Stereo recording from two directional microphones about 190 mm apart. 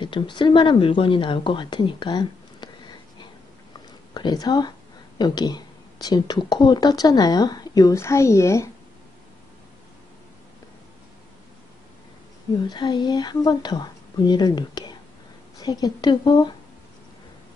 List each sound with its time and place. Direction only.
0.0 s speech: 25° left (ahead or behind)
4.1 s speech: 20° left (ahead or behind)
12.6 s speech: 20° left (ahead or behind)